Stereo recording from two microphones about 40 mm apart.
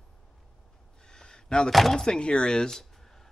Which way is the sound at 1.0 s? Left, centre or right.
Centre.